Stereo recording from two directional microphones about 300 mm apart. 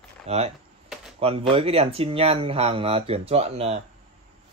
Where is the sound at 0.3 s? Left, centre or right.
Centre.